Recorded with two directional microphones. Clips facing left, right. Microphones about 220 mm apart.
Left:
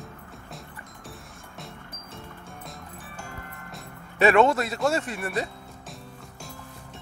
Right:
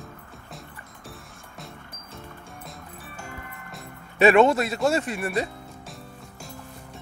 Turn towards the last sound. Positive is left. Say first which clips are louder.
# right 3 dB
turn(degrees=-20)  # may be behind; listen again after turning